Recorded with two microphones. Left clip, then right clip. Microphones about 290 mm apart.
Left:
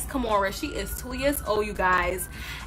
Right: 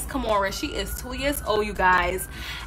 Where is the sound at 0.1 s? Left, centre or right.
Centre.